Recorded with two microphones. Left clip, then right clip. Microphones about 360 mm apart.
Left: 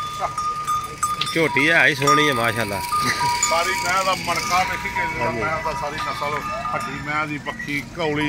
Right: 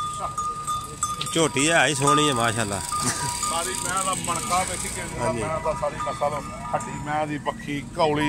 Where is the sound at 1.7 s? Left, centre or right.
Centre.